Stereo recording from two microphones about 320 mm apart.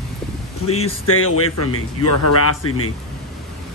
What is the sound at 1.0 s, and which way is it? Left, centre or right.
Speech, left.